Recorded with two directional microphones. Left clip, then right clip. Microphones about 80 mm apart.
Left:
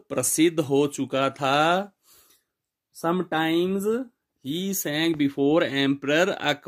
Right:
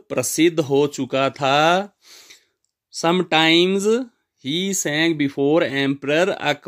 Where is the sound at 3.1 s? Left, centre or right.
Right.